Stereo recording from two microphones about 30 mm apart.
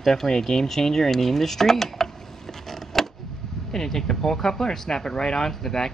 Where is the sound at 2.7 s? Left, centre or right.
Centre.